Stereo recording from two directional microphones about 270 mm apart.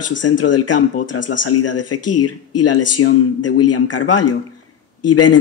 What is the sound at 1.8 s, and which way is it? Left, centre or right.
Speech, left.